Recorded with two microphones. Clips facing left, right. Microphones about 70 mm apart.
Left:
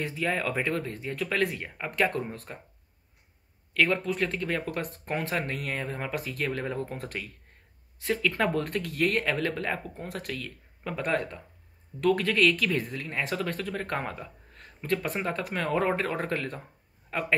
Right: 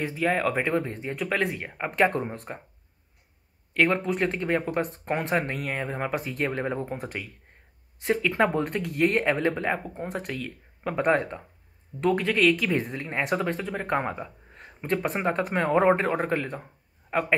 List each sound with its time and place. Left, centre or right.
0.0 s speech: centre
0.7 s speech: right; by 1.8 s centre
2.0 s speech: right
3.7 s speech: right
5.4 s speech: centre
8.6 s speech: centre
8.9 s speech: centre
10.3 s speech: centre
11.1 s speech: right
13.9 s speech: right